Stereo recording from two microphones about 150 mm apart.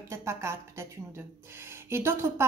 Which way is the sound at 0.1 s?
20° right (ahead or behind).